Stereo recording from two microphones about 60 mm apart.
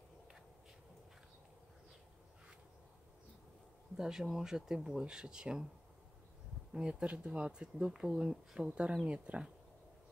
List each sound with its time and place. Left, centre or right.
3.9 s speech: centre
6.7 s speech: centre